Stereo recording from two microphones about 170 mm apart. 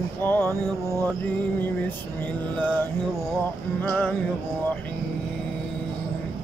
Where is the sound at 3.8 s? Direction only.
10° left (ahead or behind).